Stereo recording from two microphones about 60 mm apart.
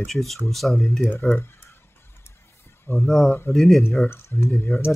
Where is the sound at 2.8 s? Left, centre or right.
Left.